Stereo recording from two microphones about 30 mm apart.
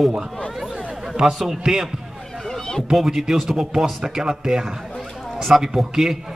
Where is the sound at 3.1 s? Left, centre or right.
Centre.